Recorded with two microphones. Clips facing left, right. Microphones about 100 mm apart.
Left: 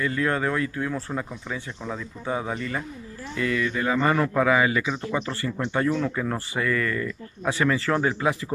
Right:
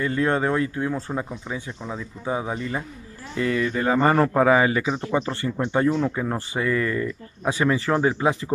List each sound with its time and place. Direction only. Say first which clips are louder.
0.0 s speech: right 3 dB; 30° right (ahead or behind)